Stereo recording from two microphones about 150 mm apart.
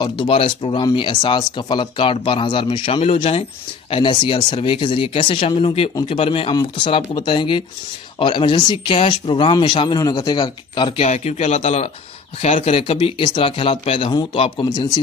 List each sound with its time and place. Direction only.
0.0 s speech: 30° left (ahead or behind)
11.1 s speech: 50° left (ahead or behind); by 14.9 s 35° left (ahead or behind)